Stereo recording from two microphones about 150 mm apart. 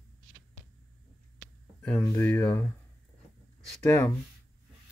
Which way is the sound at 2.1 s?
15° left (ahead or behind).